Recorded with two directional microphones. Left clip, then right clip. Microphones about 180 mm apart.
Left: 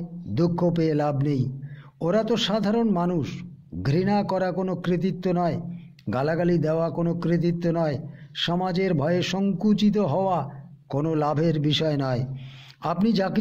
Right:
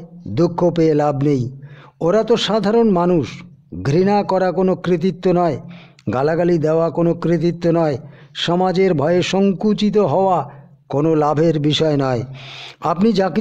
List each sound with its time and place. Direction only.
0.3 s a man's voice: 35° right (ahead or behind)